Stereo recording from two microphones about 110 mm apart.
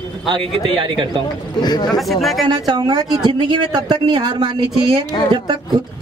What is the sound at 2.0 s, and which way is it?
Speech, centre (ahead or behind).